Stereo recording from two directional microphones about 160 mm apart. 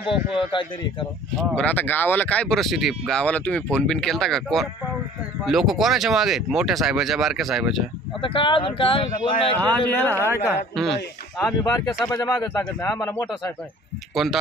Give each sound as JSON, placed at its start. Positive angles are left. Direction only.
{"t": 0.4, "sound": "speech", "side_deg": 30}
{"t": 1.5, "sound": "speech", "side_deg": 10}
{"t": 8.2, "sound": "speech", "side_deg": 30}
{"t": 9.6, "sound": "speech", "side_deg": 10}
{"t": 10.2, "sound": "a woman's voice", "side_deg": -15}
{"t": 10.8, "sound": "speech", "side_deg": 5}
{"t": 11.6, "sound": "speech", "side_deg": 20}
{"t": 14.1, "sound": "speech", "side_deg": 0}